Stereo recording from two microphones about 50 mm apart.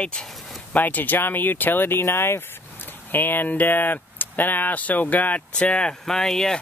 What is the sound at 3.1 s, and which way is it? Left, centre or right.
Speech, left.